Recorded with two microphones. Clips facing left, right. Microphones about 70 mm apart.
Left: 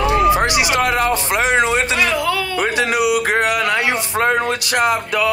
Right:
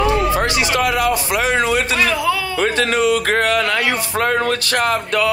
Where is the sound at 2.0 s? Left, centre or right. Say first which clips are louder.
Right 1 dB; centre.